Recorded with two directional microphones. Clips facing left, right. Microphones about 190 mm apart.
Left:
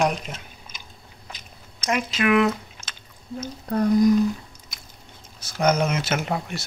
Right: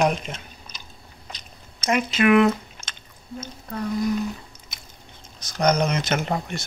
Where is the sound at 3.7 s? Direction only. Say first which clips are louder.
Left 7 dB; 45° left (ahead or behind).